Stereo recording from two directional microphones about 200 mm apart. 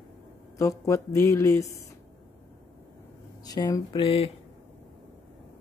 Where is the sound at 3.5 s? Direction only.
20° left (ahead or behind).